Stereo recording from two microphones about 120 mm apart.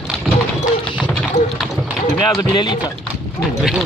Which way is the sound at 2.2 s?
35° left (ahead or behind).